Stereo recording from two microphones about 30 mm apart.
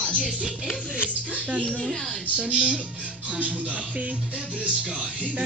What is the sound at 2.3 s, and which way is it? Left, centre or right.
Speech, right.